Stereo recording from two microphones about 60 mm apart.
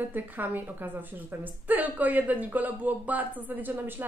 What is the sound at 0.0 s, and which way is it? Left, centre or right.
A woman's voice, right.